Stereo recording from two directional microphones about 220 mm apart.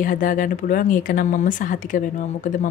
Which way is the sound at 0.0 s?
35° left (ahead or behind).